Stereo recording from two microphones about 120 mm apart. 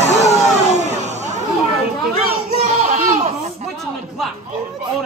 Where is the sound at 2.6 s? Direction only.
60° right (ahead or behind).